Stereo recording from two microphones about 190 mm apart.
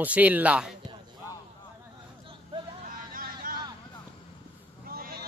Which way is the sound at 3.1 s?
50° right (ahead or behind).